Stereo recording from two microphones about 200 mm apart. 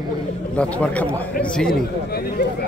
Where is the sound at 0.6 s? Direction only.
5° left (ahead or behind).